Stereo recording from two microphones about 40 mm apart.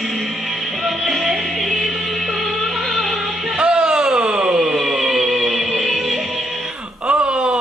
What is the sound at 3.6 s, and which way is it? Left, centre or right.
Music, right.